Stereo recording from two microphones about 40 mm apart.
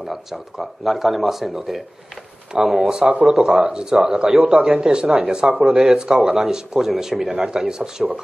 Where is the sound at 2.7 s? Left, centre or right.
Centre.